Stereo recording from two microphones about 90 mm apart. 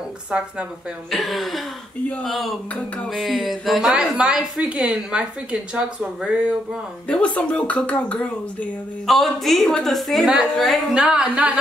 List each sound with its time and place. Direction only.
1.1 s a woman's voice: centre (ahead or behind)
7.1 s speech: 10° left (ahead or behind)
9.0 s a woman's voice: centre (ahead or behind)